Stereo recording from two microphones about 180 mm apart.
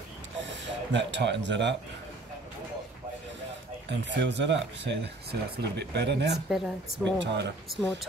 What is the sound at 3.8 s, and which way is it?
Speech, 80° right.